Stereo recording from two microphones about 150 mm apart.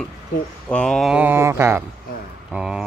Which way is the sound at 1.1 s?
15° right (ahead or behind).